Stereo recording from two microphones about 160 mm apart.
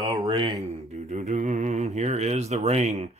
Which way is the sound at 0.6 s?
40° right (ahead or behind).